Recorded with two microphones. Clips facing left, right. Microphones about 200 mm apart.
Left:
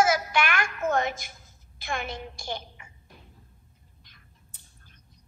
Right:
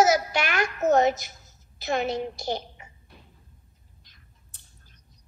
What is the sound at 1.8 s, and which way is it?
Speech, 50° left (ahead or behind).